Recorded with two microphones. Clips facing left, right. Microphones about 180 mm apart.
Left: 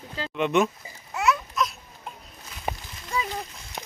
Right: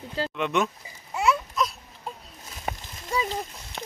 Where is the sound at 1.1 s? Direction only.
30° right (ahead or behind).